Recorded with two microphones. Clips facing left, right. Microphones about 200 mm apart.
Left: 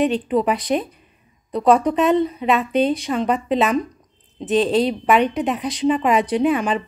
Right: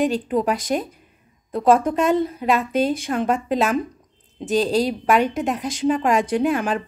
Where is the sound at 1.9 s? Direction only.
Centre (ahead or behind).